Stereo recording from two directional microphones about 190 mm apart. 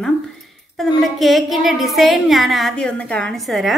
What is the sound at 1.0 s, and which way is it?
Speech, centre (ahead or behind).